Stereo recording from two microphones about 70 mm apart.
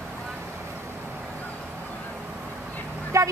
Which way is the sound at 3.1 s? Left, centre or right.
Right.